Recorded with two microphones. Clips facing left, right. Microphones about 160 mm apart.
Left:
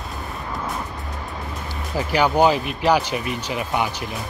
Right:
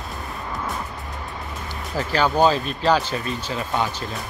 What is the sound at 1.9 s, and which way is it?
Speech, 15° left (ahead or behind).